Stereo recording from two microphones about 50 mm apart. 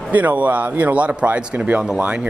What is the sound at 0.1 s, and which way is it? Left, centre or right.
Speech, right.